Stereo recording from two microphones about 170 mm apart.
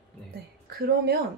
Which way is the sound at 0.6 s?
65° right (ahead or behind).